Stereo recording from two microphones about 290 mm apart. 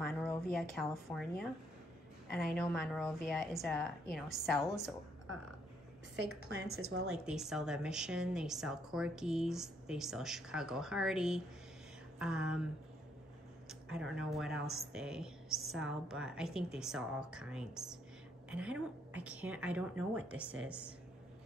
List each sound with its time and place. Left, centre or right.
0.0 s a sound: centre
0.7 s a woman's voice: centre
2.5 s a woman's voice: centre
6.2 s a woman's voice: right
7.1 s a woman's voice: centre
13.7 s a woman's voice: centre